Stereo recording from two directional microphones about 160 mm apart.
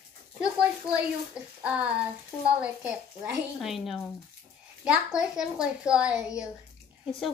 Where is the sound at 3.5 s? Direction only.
Centre (ahead or behind).